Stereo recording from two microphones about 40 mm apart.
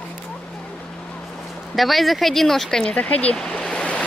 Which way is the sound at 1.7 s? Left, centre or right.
Centre.